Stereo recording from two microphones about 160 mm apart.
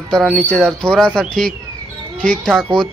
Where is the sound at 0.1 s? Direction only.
5° left (ahead or behind).